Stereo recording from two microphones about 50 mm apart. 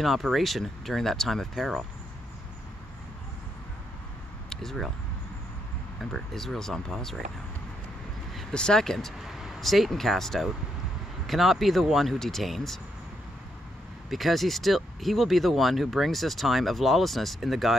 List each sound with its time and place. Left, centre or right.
0.0 s speech: centre
4.5 s speech: centre
5.9 s speech: centre
8.3 s vehicle: centre
8.5 s speech: centre
9.2 s speech: centre
14.1 s speech: centre